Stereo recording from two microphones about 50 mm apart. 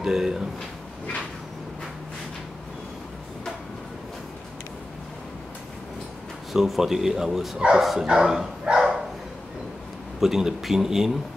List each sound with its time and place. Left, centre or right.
0.0 s speech: centre
6.5 s speech: centre
7.5 s speech: centre
8.6 s dog: centre
10.2 s speech: centre